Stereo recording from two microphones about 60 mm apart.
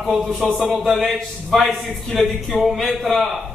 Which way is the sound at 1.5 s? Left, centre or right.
Centre.